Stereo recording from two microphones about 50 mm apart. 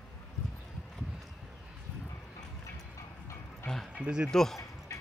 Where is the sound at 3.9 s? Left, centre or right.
Centre.